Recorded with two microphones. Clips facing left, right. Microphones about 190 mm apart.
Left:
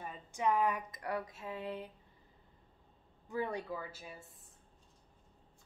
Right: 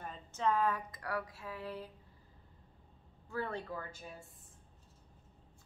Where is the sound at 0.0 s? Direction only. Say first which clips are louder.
Even; 10° left (ahead or behind).